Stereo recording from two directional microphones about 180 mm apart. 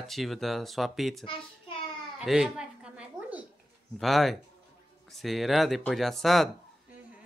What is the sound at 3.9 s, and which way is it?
Speech, centre (ahead or behind).